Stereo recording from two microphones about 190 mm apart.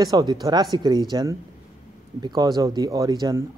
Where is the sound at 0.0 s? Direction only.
20° right (ahead or behind).